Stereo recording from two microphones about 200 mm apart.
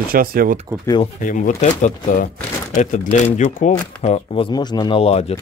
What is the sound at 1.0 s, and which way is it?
Speech, 40° left (ahead or behind).